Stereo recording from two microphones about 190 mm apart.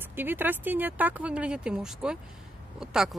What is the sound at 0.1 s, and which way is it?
Speech, 10° right (ahead or behind).